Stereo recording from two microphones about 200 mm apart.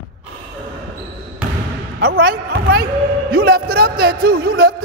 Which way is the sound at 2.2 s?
50° right (ahead or behind).